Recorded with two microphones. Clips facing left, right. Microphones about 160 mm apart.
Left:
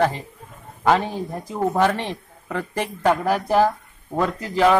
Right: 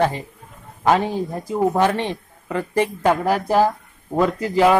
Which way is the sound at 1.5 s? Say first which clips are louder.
Right 2 dB; 5° right (ahead or behind).